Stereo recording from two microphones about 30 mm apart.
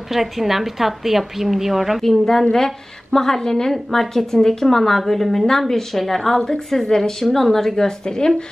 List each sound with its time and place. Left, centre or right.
0.1 s a woman's voice: centre
2.0 s a woman's voice: centre
4.3 s a woman's voice: centre
4.6 s a woman's voice: centre
7.7 s a woman's voice: left